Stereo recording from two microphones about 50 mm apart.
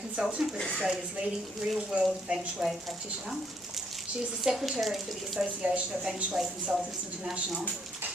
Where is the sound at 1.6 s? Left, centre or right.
Centre.